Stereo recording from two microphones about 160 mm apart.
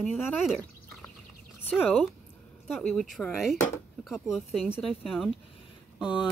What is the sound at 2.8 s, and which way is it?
Speech, 5° left (ahead or behind).